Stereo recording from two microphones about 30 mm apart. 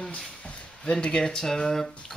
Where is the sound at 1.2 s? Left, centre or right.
Centre.